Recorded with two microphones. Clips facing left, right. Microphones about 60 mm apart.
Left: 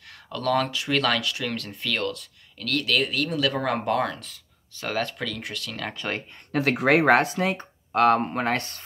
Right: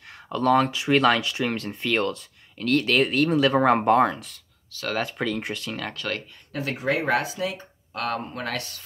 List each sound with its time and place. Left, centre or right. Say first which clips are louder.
0.3 s speech: right 4 dB; right
5.9 s speech: left 2 dB; left
6.5 s speech: left 6 dB; left
7.1 s speech: left 5 dB; left